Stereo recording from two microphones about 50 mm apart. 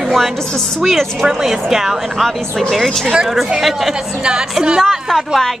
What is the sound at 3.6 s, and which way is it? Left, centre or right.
Speech, centre.